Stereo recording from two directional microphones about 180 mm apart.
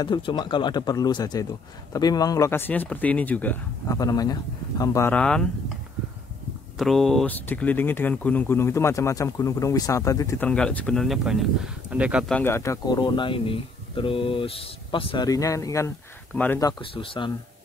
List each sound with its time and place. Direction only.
0.0 s a man's voice: 25° left (ahead or behind); by 5.5 s 5° left (ahead or behind)
6.8 s speech: centre (ahead or behind)
12.3 s a man's voice: 10° left (ahead or behind); by 17.3 s 30° left (ahead or behind)